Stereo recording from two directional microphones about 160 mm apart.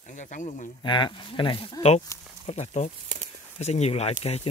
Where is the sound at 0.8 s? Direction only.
30° left (ahead or behind).